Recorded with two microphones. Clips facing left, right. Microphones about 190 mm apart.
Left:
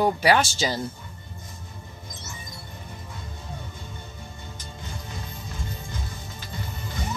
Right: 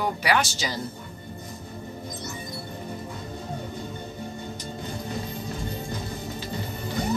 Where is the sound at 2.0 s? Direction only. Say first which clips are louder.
Right 7 dB; 35° right (ahead or behind).